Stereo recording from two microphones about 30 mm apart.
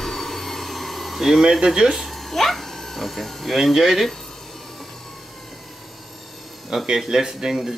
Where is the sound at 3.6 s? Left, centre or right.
Centre.